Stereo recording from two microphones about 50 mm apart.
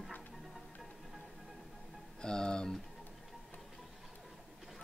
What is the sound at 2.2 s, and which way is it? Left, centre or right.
Speech, centre.